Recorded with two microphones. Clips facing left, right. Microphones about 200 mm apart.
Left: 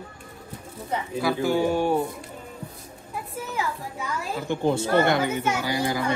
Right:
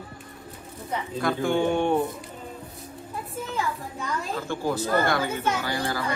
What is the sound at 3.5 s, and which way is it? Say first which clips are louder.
A child's voice: even; 10° left (ahead or behind).